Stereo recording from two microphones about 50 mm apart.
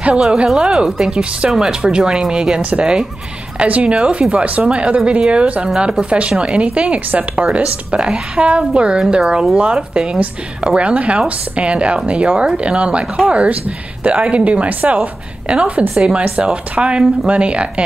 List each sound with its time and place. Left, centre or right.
0.0 s speech: right
15.9 s speech: centre
16.2 s speech: right